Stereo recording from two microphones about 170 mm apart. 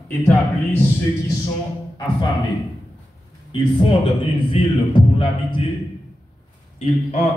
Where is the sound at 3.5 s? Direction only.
35° left (ahead or behind).